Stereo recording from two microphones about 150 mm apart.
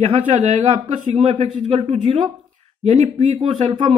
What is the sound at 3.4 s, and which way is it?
Speech, 35° right (ahead or behind).